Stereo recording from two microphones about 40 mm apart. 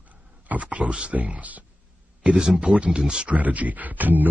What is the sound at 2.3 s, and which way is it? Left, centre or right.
Speech, centre.